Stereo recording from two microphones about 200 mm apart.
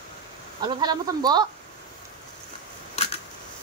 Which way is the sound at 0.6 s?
20° right (ahead or behind).